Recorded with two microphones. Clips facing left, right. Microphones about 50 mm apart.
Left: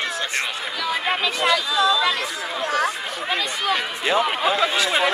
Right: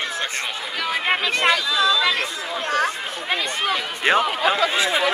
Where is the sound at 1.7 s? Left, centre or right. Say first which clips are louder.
Even; centre.